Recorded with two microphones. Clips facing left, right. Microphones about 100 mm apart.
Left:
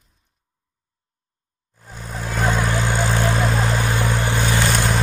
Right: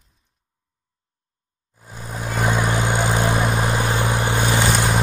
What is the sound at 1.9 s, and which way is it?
Vehicle, 10° right (ahead or behind).